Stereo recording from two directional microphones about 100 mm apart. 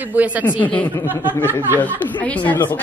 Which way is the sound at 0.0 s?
15° right (ahead or behind).